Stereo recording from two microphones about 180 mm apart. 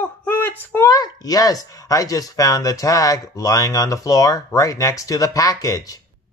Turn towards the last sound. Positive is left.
turn(degrees=20)  # may be behind; listen again after turning